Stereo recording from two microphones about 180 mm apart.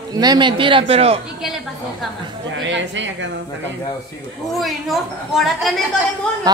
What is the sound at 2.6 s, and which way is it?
Speech, 90° right.